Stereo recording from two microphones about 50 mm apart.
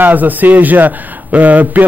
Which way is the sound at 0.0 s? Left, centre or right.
Right.